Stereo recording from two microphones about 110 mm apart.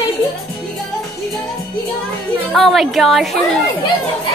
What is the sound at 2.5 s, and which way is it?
A woman's voice, centre (ahead or behind).